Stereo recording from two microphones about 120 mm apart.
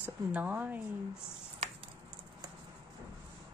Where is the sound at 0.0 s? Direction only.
15° right (ahead or behind).